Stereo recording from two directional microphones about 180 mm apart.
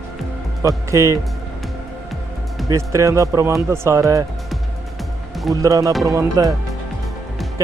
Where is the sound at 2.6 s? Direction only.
15° right (ahead or behind).